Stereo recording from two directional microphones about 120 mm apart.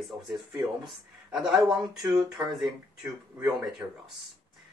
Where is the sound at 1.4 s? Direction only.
5° right (ahead or behind).